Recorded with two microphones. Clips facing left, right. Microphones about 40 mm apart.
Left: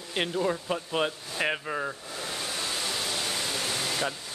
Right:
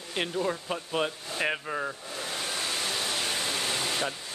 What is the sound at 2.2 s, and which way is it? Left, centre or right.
Pink noise, right.